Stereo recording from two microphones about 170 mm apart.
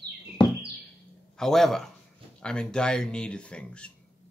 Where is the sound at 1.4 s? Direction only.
Centre (ahead or behind).